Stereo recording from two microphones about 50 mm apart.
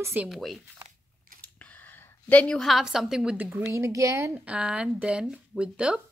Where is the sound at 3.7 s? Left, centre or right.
Right.